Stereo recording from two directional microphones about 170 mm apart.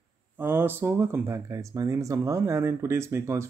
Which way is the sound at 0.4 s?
10° right (ahead or behind).